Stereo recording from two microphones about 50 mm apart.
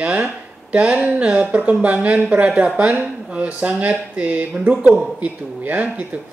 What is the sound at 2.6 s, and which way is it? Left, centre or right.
A woman's voice, centre.